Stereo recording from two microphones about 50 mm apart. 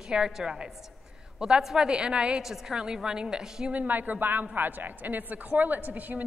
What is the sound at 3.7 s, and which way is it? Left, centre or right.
A woman's voice, right.